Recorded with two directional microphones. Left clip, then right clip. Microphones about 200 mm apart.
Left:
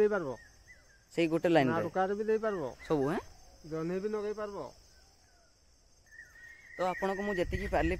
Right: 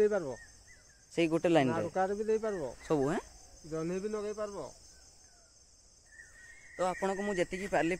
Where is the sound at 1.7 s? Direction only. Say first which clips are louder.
Left 1 dB; 40° left (ahead or behind).